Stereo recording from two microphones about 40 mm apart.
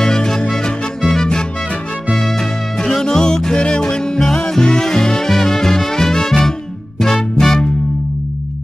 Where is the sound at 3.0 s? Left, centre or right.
Centre.